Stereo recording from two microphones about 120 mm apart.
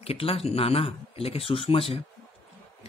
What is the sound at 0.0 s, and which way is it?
A man's voice, 55° left (ahead or behind).